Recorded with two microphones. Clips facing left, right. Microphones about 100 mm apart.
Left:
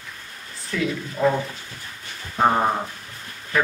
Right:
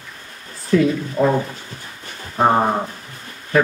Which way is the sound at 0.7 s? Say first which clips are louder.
Right 9 dB; 40° right (ahead or behind).